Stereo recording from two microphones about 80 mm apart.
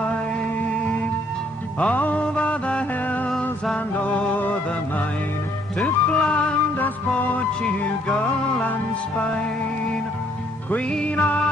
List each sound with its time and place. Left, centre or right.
1.8 s music: centre
5.8 s music: centre
10.9 s music: centre